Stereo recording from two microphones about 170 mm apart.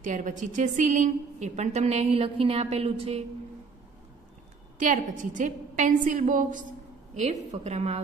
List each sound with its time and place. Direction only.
0.0 s a woman's voice: 50° right (ahead or behind)
4.7 s a woman's voice: 50° right (ahead or behind)
7.2 s a woman's voice: 40° right (ahead or behind)